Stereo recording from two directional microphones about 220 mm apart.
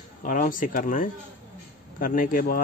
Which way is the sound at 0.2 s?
40° left (ahead or behind).